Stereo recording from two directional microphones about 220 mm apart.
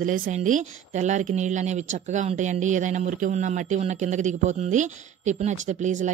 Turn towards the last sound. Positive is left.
turn(degrees=-30)  # may be behind; listen again after turning